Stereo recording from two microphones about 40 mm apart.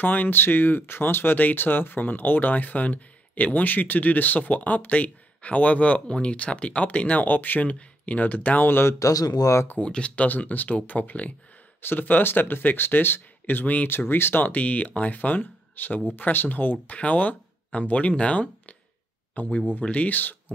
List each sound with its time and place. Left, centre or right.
0.0 s speech: left
7.2 s speech: left
7.6 s speech: left
8.5 s speech: left
9.8 s speech: left
10.2 s speech: left
11.8 s speech: left
13.8 s speech: left
14.5 s speech: left
16.8 s speech: left
19.4 s speech: left